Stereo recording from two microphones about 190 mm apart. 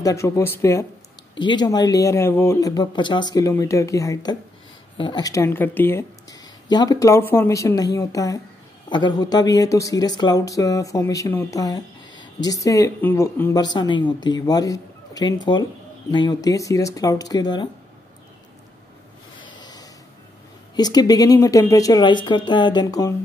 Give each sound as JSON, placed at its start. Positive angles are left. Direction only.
{"t": 0.0, "sound": "a woman's voice", "side_deg": 15}
{"t": 19.4, "sound": "rub", "side_deg": 20}
{"t": 20.7, "sound": "speech", "side_deg": 20}